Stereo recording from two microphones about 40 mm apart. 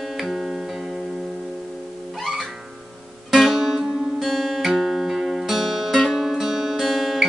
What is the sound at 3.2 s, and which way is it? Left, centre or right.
Music, centre.